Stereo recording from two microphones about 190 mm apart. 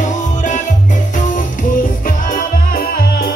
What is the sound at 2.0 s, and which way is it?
Music, 45° left (ahead or behind).